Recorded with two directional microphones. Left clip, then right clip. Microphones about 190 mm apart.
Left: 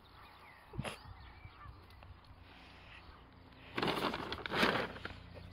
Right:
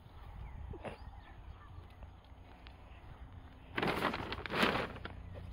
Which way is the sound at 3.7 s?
Centre (ahead or behind).